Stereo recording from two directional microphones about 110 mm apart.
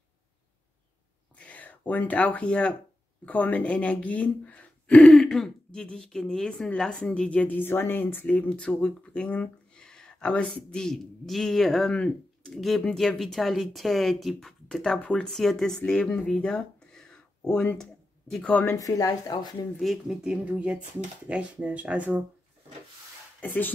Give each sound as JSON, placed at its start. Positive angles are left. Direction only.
{"t": 1.4, "sound": "speech", "side_deg": 15}
{"t": 16.3, "sound": "a sound", "side_deg": 10}
{"t": 17.5, "sound": "speech", "side_deg": 10}
{"t": 18.8, "sound": "speech", "side_deg": 30}
{"t": 19.8, "sound": "speech", "side_deg": 0}
{"t": 23.4, "sound": "speech", "side_deg": 15}